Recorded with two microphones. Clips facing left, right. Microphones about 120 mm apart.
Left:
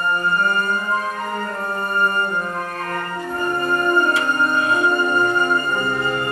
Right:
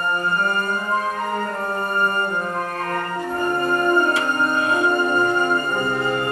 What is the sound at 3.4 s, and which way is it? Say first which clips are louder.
Music: even; 40° right (ahead or behind).